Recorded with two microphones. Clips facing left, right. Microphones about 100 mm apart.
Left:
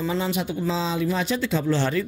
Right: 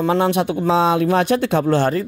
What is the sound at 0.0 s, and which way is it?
Speech, 65° right (ahead or behind).